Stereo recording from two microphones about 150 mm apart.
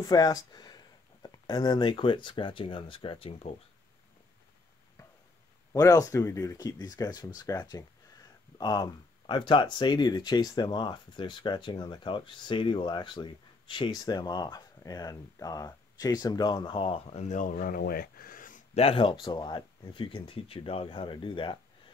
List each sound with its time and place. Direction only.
0.0 s speech: 25° left (ahead or behind)
5.7 s speech: 20° left (ahead or behind); by 18.6 s 65° left (ahead or behind)
18.8 s speech: 40° left (ahead or behind)